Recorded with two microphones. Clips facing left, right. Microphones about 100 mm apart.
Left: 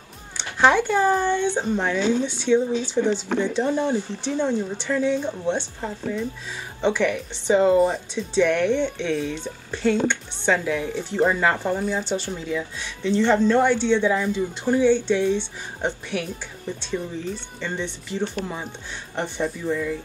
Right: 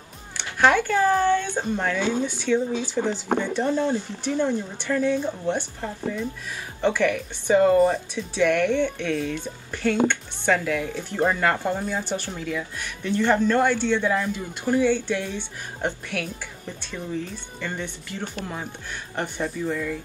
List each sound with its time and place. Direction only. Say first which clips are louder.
0.4 s speech: left 1 dB; 20° left (ahead or behind)
17.6 s speech: right 2 dB; 20° left (ahead or behind)